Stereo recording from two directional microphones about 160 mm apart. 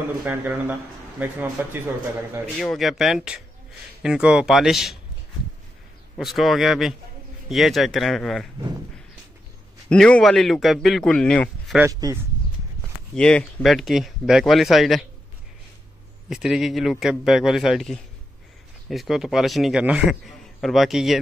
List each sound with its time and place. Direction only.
0.2 s speech: 10° right (ahead or behind)
2.5 s a man's voice: centre (ahead or behind)
6.1 s a man's voice: centre (ahead or behind)
9.8 s a man's voice: 5° left (ahead or behind)
11.8 s speech: 20° right (ahead or behind)
13.1 s a man's voice: 5° left (ahead or behind)
16.3 s a man's voice: 5° right (ahead or behind)